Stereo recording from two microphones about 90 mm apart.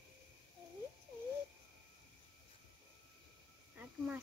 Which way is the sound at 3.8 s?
20° right (ahead or behind).